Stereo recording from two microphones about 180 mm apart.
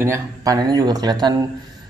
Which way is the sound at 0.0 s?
15° right (ahead or behind).